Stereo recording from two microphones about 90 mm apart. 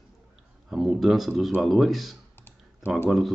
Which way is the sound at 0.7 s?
Centre (ahead or behind).